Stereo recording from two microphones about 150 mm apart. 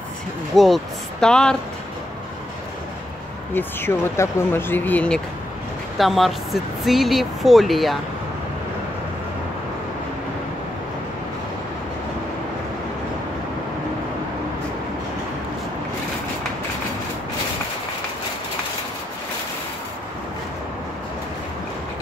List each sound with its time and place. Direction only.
0.6 s speech: centre (ahead or behind)
3.5 s speech: 15° left (ahead or behind); by 8.0 s centre (ahead or behind)